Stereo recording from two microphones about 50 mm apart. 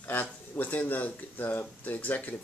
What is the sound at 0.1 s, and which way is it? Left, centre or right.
Speech, left.